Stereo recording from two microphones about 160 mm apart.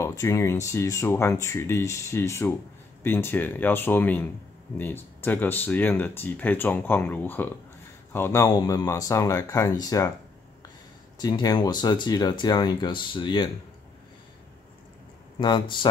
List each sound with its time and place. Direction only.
0.0 s speech: 20° left (ahead or behind)
11.1 s speech: 25° left (ahead or behind)
15.3 s speech: 30° left (ahead or behind)